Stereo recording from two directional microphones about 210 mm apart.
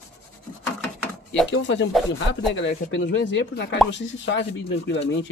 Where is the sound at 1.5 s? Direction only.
60° left (ahead or behind).